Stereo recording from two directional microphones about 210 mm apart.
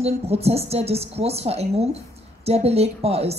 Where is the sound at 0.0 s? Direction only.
30° right (ahead or behind).